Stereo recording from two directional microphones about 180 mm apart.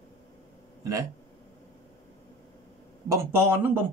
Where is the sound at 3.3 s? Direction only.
10° right (ahead or behind).